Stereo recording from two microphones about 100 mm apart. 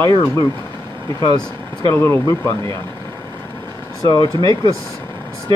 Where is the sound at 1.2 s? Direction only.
50° left (ahead or behind).